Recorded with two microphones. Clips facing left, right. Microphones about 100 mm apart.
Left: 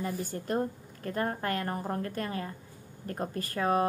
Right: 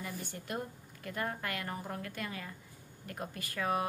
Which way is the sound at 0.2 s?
40° left (ahead or behind).